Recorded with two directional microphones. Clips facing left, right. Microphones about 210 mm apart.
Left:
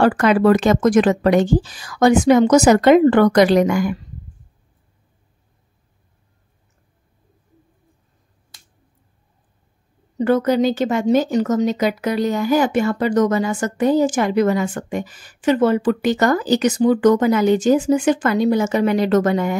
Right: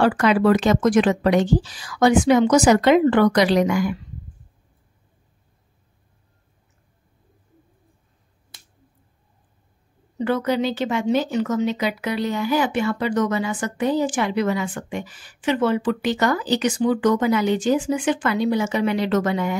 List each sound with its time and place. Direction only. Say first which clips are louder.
0.0 s speech: left 3 dB; 45° left (ahead or behind)
10.1 s speech: left 5 dB; 45° left (ahead or behind)